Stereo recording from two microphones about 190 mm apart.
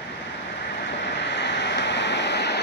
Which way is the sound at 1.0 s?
65° left (ahead or behind).